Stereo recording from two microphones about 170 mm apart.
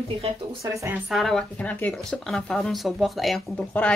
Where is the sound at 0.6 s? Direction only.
20° right (ahead or behind).